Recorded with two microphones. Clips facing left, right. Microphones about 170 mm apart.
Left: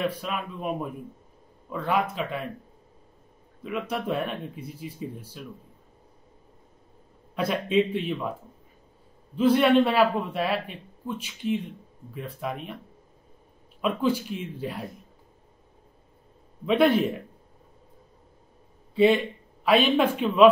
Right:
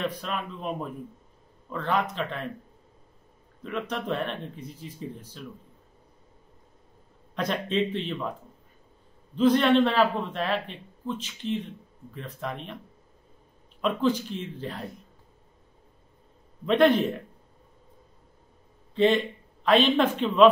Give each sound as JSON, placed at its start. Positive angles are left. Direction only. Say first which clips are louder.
{"t": 0.0, "sound": "speech", "louder": "left 2 dB", "side_deg": 10}
{"t": 3.6, "sound": "speech", "louder": "left 1 dB", "side_deg": 10}
{"t": 7.3, "sound": "speech", "louder": "left 3 dB", "side_deg": 10}
{"t": 9.3, "sound": "speech", "louder": "left 1 dB", "side_deg": 10}
{"t": 13.7, "sound": "speech", "louder": "even", "side_deg": 10}
{"t": 16.6, "sound": "speech", "louder": "even", "side_deg": 5}
{"t": 18.9, "sound": "a man's voice", "louder": "left 2 dB", "side_deg": 10}